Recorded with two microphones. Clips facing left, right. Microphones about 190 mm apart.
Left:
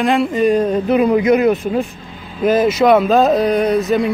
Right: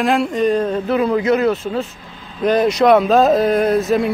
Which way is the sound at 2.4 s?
5° left (ahead or behind).